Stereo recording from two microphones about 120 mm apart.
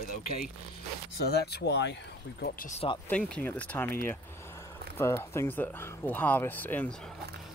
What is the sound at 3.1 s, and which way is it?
Speech, 10° left (ahead or behind).